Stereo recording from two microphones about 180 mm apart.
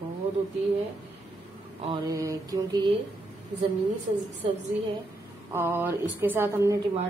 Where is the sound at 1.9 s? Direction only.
20° right (ahead or behind).